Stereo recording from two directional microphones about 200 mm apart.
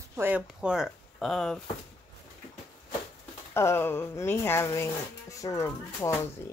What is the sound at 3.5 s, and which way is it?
Speech, 10° left (ahead or behind).